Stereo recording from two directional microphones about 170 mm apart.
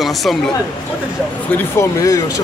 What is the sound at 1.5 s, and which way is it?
Speech, 15° left (ahead or behind).